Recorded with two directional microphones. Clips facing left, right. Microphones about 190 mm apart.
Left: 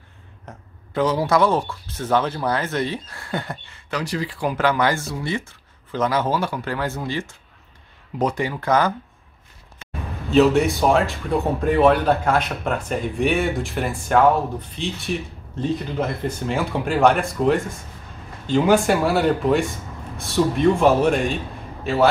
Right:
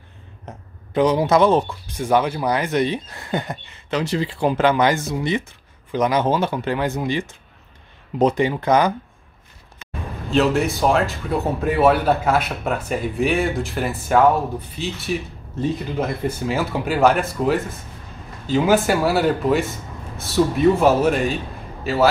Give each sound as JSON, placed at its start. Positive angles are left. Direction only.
{"t": 0.5, "sound": "speech", "side_deg": -20}
{"t": 10.3, "sound": "speech", "side_deg": 0}